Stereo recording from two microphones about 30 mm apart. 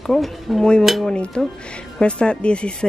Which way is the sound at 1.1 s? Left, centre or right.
Left.